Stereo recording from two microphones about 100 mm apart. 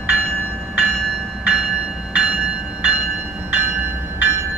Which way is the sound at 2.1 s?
15° right (ahead or behind).